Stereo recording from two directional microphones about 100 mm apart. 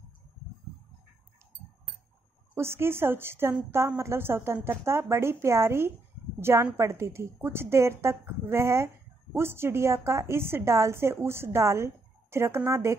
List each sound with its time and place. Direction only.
2.5 s a woman's voice: 25° right (ahead or behind)